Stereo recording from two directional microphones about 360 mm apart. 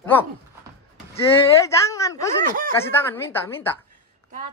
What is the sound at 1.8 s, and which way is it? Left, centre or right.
Speech, centre.